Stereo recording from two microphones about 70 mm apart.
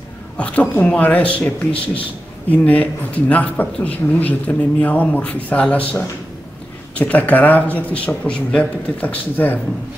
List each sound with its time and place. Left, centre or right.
0.4 s speech: centre
2.5 s speech: left